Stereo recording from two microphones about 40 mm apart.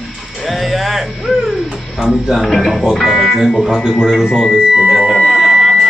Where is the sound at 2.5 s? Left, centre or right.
Centre.